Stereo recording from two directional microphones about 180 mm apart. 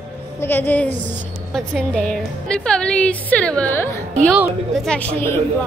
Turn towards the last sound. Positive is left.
turn(degrees=5)  # may be behind; listen again after turning